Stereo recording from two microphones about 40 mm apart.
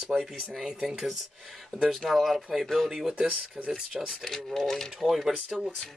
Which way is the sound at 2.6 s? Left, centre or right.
Centre.